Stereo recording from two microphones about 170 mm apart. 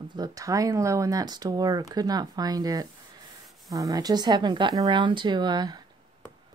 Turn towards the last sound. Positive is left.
turn(degrees=-25)  # may be behind; listen again after turning